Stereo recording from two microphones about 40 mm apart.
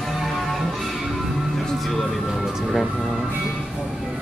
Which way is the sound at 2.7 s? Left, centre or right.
Centre.